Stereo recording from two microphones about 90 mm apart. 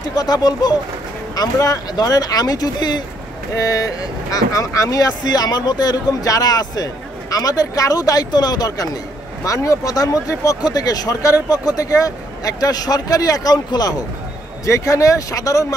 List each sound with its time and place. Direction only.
0.1 s speech: 45° left (ahead or behind)
14.7 s speech: 35° left (ahead or behind)